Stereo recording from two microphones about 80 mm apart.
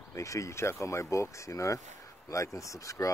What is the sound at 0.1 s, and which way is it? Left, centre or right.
Speech, left.